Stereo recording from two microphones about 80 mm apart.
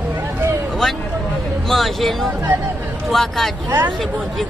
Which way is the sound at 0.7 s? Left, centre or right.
Centre.